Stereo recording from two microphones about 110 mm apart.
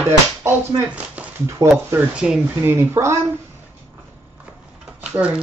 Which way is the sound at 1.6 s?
25° right (ahead or behind).